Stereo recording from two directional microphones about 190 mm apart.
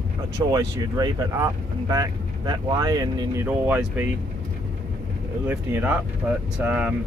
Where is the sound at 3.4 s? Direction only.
10° right (ahead or behind).